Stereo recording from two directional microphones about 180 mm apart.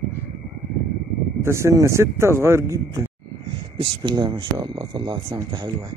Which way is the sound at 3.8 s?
30° right (ahead or behind).